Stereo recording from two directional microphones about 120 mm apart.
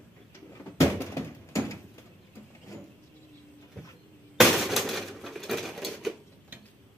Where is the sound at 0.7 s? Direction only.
25° left (ahead or behind).